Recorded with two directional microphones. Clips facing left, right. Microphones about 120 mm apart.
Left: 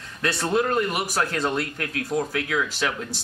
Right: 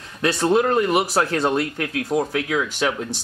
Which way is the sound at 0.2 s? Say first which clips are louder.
Right 5 dB; 20° right (ahead or behind).